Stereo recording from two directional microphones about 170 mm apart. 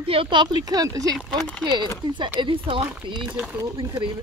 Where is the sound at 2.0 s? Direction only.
25° right (ahead or behind).